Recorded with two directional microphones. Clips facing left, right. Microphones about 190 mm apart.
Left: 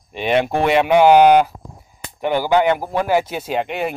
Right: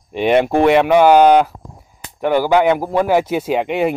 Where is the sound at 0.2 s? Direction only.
10° right (ahead or behind).